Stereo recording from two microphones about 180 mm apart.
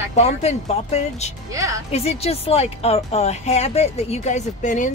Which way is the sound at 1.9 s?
35° left (ahead or behind).